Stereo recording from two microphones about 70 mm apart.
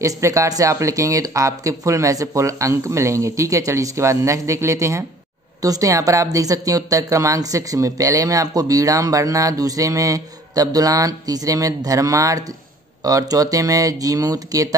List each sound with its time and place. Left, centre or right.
0.0 s a woman's voice: right